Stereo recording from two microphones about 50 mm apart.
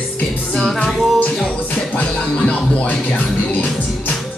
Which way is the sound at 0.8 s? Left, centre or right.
Centre.